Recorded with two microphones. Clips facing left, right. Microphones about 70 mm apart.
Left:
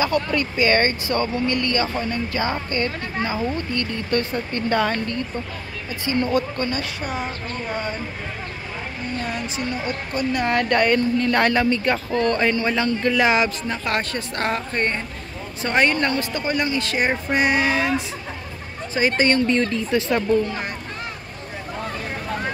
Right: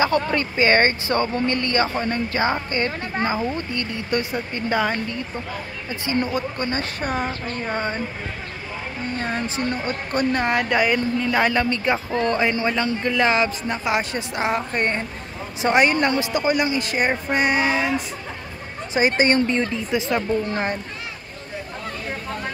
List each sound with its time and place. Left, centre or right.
0.0 s speech: right
7.0 s speech: right
9.2 s speech: right
10.5 s speech: centre
13.2 s speech: centre
13.7 s speech: centre
18.9 s speech: centre